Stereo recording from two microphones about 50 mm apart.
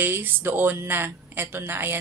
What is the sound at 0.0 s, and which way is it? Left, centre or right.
Speech, right.